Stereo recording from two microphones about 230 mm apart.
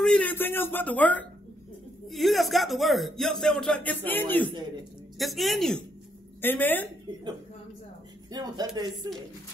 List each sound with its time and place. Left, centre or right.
0.0 s speech: centre
8.3 s speech: centre